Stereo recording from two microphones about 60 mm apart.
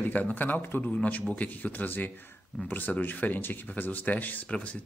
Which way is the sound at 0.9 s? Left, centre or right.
Left.